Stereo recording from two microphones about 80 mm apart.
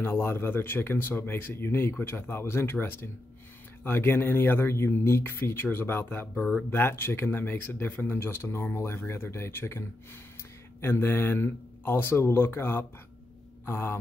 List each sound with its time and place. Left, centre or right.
0.0 s speech: left